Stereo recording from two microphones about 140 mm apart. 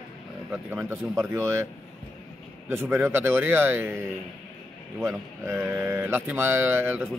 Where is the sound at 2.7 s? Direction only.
15° right (ahead or behind).